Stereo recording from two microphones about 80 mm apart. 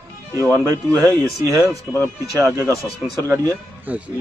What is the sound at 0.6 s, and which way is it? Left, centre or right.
Speech, right.